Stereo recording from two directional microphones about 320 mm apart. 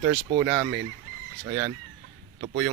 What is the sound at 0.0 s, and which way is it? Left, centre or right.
Speech, centre.